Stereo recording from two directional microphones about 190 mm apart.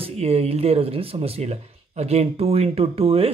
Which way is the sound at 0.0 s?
30° right (ahead or behind).